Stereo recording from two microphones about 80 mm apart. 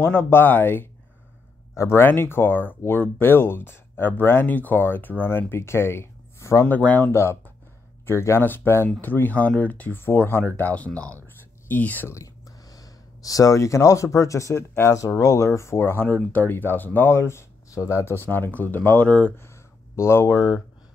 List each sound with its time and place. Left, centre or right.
0.0 s speech: left
6.6 s speech: centre
7.1 s speech: left
12.7 s speech: left
18.1 s speech: left
20.0 s speech: left